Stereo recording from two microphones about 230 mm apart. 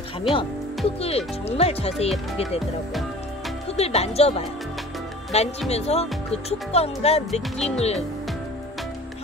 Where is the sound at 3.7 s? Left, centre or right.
Left.